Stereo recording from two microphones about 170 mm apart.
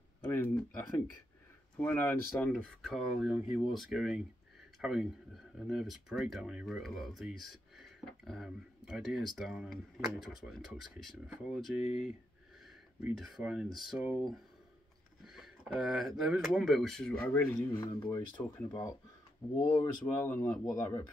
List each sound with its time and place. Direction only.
0.3 s speech: 15° left (ahead or behind)
13.0 s speech: 5° right (ahead or behind)
17.2 s speech: 15° left (ahead or behind)